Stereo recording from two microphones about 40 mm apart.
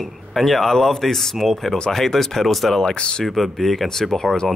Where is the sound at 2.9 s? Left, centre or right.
Left.